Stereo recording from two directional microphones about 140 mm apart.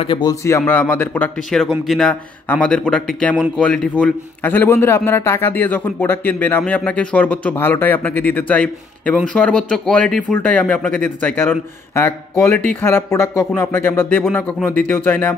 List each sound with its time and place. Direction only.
0.0 s a man's voice: 35° left (ahead or behind)
0.3 s a man's voice: 20° left (ahead or behind)